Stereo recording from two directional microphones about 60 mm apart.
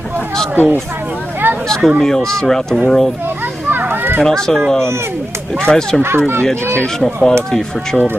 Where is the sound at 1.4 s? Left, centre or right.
Right.